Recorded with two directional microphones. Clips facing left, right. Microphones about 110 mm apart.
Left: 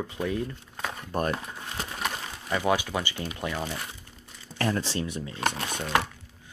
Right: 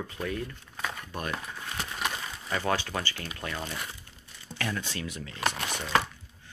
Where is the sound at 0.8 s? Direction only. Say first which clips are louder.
Left 6 dB; 40° left (ahead or behind).